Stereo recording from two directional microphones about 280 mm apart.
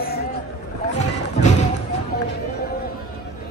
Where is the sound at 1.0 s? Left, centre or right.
Left.